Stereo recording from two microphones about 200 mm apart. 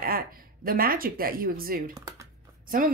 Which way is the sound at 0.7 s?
45° right (ahead or behind).